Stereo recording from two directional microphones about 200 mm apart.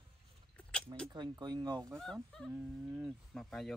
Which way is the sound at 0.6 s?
5° left (ahead or behind).